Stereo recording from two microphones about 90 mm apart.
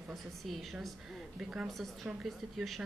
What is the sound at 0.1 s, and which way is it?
Speech, centre (ahead or behind).